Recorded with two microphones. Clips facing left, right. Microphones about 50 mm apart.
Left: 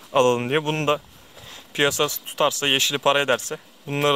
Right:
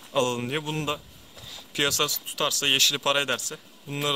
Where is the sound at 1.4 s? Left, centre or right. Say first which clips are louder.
Left 5 dB; left.